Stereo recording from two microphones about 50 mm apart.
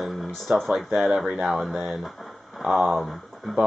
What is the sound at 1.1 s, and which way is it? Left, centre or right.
Speech, centre.